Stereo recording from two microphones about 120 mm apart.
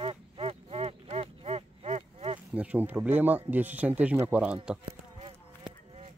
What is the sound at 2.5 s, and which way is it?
Speech, 10° right (ahead or behind).